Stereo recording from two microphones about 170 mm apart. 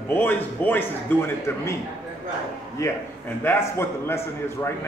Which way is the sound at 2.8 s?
15° left (ahead or behind).